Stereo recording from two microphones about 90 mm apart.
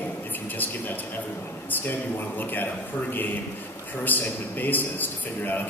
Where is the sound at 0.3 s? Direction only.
20° left (ahead or behind).